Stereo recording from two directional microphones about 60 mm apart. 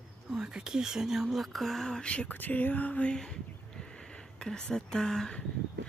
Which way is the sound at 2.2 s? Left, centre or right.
Left.